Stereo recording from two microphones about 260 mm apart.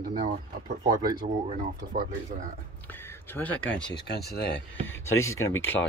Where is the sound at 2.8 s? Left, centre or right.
Centre.